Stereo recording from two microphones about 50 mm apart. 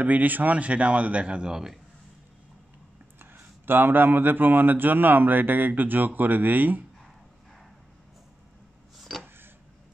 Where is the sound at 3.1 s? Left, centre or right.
Right.